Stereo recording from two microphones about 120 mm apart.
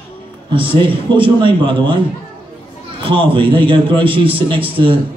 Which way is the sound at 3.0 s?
45° right (ahead or behind).